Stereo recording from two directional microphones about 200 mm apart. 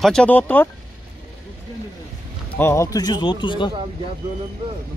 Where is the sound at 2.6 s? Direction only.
15° left (ahead or behind).